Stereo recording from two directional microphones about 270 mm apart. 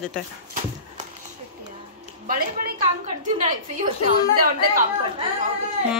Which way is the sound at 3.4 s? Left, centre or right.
Right.